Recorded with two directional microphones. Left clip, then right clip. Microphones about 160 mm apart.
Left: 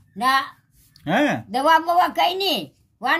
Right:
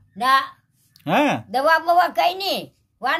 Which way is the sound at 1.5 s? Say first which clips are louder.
Even; 20° right (ahead or behind).